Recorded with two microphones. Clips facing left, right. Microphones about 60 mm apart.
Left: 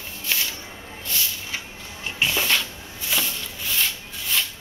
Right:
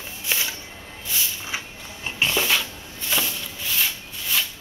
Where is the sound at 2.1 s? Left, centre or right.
Centre.